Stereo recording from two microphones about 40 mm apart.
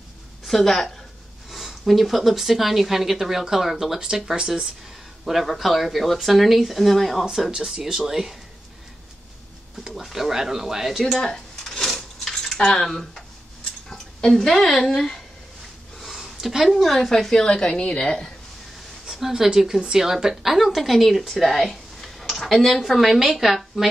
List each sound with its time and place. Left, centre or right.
0.5 s a woman's voice: centre
7.5 s a woman's voice: centre
9.9 s a woman's voice: centre
11.0 s speech: centre
12.8 s speech: centre
16.3 s a sound: centre
16.6 s a woman's voice: centre
19.0 s a woman's voice: centre
21.3 s a sound: centre
22.8 s speech: centre